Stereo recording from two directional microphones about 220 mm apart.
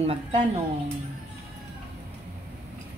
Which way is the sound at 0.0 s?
25° right (ahead or behind).